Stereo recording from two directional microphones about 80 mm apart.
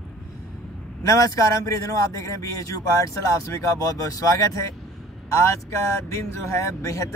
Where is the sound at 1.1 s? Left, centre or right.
Left.